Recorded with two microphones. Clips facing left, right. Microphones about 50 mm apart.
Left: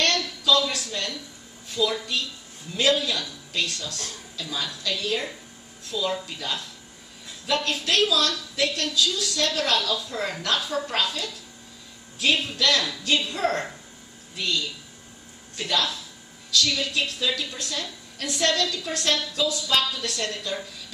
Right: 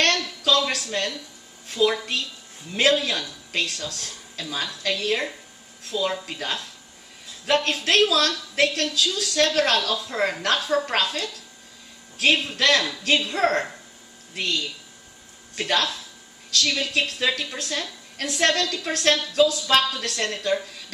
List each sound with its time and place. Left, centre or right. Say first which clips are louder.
0.0 s a sound: right 2 dB; right
0.7 s a woman's voice: right 4 dB; right
12.5 s a woman's voice: right 3 dB; right
15.5 s a woman's voice: right 2 dB; right